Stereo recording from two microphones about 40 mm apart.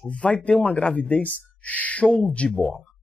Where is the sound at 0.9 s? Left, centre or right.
Left.